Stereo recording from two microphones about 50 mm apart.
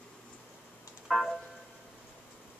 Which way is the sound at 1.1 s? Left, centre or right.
Centre.